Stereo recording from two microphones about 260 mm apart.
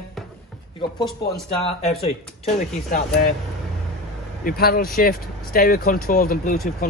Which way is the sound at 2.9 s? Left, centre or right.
Left.